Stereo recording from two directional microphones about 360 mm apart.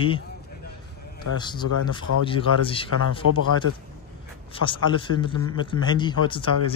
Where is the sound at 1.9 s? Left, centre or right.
Centre.